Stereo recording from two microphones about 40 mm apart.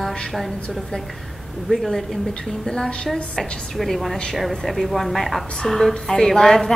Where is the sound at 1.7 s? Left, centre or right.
Centre.